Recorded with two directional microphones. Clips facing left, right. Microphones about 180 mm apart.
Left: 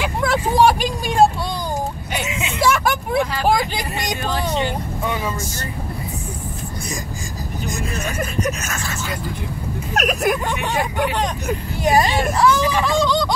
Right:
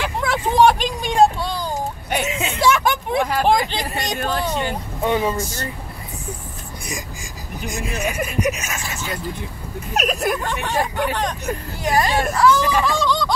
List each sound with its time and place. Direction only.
0.0 s vehicle: 10° left (ahead or behind)
2.2 s a sound: 35° right (ahead or behind)
2.6 s vehicle: 5° left (ahead or behind)
3.2 s vehicle: 50° right (ahead or behind)
3.4 s vehicle: 10° left (ahead or behind)
5.0 s speech: 30° right (ahead or behind)
7.6 s speech: 10° right (ahead or behind)
9.9 s speech: centre (ahead or behind)
10.4 s speech: 15° left (ahead or behind)